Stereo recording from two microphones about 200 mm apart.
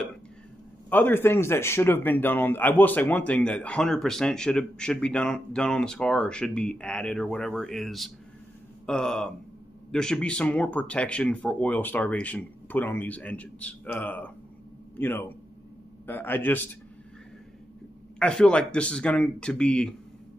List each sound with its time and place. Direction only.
0.8 s a man's voice: 10° left (ahead or behind)
18.2 s a man's voice: 5° left (ahead or behind)